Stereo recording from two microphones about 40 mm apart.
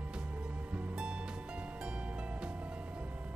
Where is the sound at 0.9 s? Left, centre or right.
Right.